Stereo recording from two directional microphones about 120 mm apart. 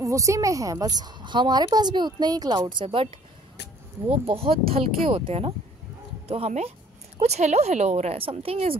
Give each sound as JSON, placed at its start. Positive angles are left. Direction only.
{"t": 0.0, "sound": "a woman's voice", "side_deg": -25}
{"t": 4.3, "sound": "speech", "side_deg": -50}
{"t": 8.2, "sound": "speech", "side_deg": -50}